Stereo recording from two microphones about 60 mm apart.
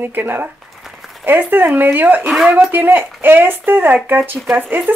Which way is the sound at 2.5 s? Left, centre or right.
Right.